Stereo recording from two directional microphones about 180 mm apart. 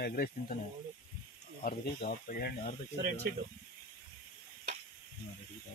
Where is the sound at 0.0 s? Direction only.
55° left (ahead or behind).